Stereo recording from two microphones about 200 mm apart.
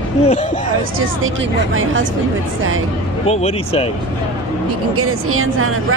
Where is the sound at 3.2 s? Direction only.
30° left (ahead or behind).